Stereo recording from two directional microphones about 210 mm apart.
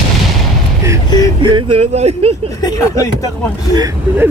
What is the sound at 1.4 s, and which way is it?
Speech, 25° right (ahead or behind).